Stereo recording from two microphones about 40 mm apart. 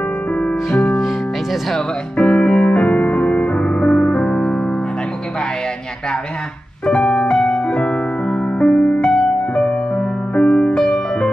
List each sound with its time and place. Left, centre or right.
2.1 s music: centre
6.9 s music: left